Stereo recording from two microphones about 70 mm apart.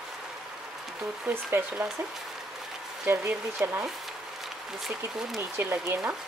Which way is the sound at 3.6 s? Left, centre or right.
Right.